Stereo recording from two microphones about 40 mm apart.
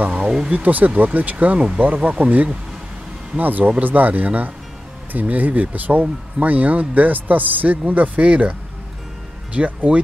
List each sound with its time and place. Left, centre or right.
0.2 s a sound: centre
0.5 s speech: right
8.2 s speech: right
9.6 s speech: right